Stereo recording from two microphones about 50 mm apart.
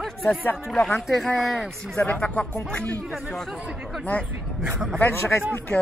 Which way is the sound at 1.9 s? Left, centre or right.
Left.